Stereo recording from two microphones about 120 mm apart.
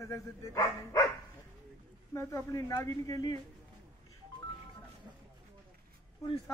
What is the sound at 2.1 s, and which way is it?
Speech, 25° left (ahead or behind).